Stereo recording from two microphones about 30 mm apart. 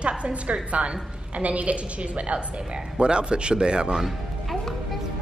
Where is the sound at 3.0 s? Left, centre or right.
Right.